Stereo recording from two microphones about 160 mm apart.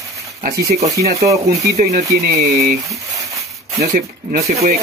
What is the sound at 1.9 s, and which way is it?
Speech, 75° right (ahead or behind).